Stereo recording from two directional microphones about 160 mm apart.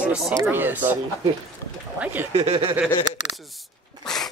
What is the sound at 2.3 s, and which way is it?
Speech, 35° right (ahead or behind).